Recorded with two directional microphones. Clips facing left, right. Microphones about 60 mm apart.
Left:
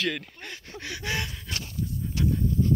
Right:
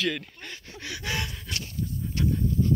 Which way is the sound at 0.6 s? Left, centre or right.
Left.